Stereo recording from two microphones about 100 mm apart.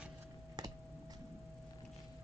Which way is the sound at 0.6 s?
45° right (ahead or behind).